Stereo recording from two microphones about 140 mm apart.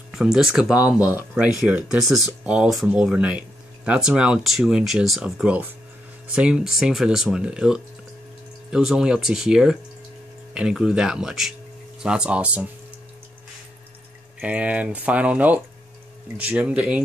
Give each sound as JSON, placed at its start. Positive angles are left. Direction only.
{"t": 0.1, "sound": "speech", "side_deg": -5}
{"t": 14.4, "sound": "speech", "side_deg": -10}